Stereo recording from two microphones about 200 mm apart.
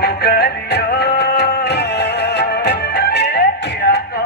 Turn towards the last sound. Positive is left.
turn(degrees=55)  # may be behind; listen again after turning